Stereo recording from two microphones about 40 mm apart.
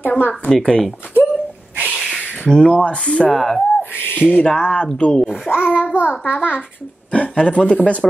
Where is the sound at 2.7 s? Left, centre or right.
Left.